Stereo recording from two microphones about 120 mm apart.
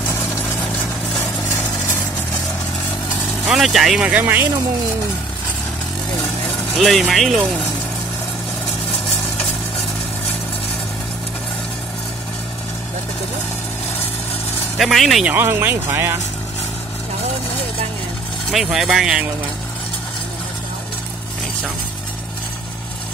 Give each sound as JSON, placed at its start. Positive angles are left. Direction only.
{"t": 1.2, "sound": "a sound", "side_deg": 20}
{"t": 3.4, "sound": "speech", "side_deg": 0}
{"t": 6.8, "sound": "speech", "side_deg": 0}
{"t": 14.8, "sound": "speech", "side_deg": 0}
{"t": 15.2, "sound": "speech", "side_deg": -20}
{"t": 18.5, "sound": "speech", "side_deg": -5}